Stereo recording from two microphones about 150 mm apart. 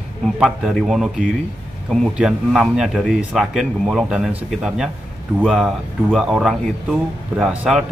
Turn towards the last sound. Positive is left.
turn(degrees=-5)  # may be behind; listen again after turning